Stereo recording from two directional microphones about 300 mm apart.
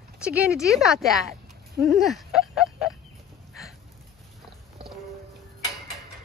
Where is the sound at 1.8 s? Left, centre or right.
Centre.